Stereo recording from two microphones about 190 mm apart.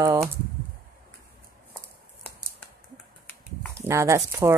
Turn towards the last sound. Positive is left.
turn(degrees=-15)  # may be behind; listen again after turning